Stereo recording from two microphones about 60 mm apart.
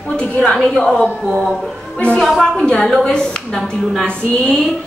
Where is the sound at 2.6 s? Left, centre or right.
Centre.